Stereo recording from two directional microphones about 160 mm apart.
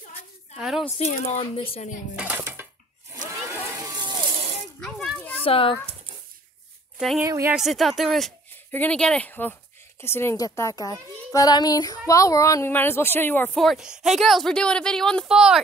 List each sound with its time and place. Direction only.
0.6 s speech: centre (ahead or behind)
0.9 s speech: 45° left (ahead or behind)
2.1 s dishes: 10° right (ahead or behind)
3.3 s a sound: 20° right (ahead or behind)
4.7 s children playing: centre (ahead or behind)
5.4 s speech: 35° left (ahead or behind)
7.2 s a woman's voice: 15° right (ahead or behind)
7.5 s a child's voice: centre (ahead or behind)
13.6 s speech: centre (ahead or behind)